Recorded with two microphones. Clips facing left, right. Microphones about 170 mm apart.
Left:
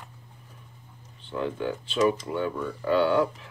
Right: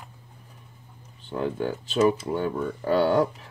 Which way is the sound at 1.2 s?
45° right (ahead or behind).